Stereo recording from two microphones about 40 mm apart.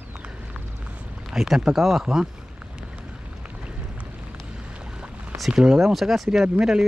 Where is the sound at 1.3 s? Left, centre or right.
Centre.